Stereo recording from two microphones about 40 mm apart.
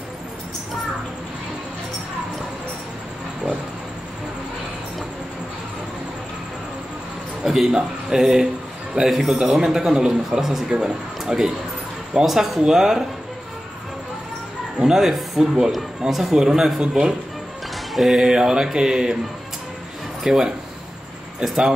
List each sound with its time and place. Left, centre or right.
7.4 s a man's voice: centre
12.3 s a man's voice: centre
14.8 s a man's voice: centre
17.9 s speech: centre
18.2 s a man's voice: centre
20.2 s a man's voice: centre